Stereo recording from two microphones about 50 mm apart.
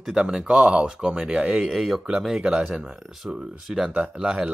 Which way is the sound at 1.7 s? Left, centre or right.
Centre.